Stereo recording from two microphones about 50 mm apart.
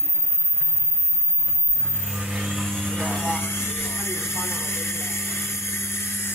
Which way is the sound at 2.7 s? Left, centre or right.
Centre.